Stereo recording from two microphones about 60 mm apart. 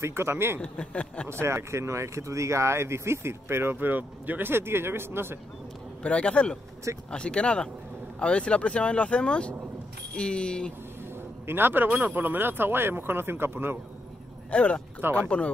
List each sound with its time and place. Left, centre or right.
0.0 s speech: right
0.6 s speech: centre
1.3 s speech: right
6.0 s speech: centre
11.1 s speech: right
14.5 s speech: centre